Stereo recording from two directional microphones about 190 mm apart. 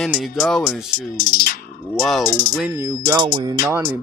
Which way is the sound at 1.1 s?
50° left (ahead or behind).